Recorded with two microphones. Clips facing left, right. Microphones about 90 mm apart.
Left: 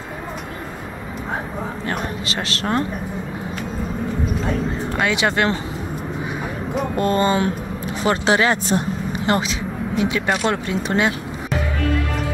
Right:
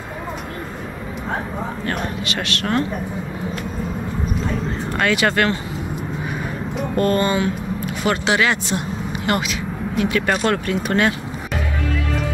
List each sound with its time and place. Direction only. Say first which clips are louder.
2.2 s speech: even; 30° left (ahead or behind)
4.9 s speech: right 2 dB; 15° left (ahead or behind)
7.0 s speech: right 1 dB; 25° left (ahead or behind)
10.0 s speech: right 2 dB; 15° left (ahead or behind)